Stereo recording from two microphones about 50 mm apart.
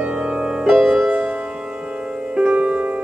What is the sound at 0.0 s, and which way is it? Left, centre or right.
Music, right.